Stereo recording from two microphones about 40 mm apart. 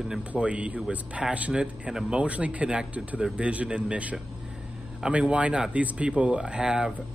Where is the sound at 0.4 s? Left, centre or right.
Right.